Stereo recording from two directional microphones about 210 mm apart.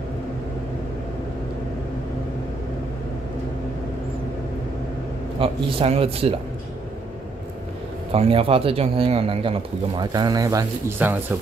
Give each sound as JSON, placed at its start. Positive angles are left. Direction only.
{"t": 5.4, "sound": "speech", "side_deg": -25}
{"t": 8.1, "sound": "speech", "side_deg": -30}